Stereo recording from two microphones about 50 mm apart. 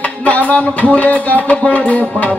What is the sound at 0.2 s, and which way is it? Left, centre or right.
Music, left.